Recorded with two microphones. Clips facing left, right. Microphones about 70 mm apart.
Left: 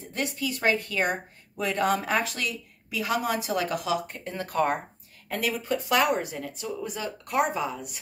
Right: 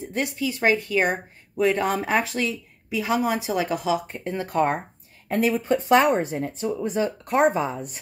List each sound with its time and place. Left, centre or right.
0.0 s speech: right